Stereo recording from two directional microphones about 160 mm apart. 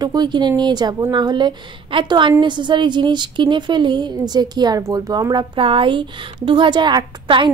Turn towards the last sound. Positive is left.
turn(degrees=-30)  # may be behind; listen again after turning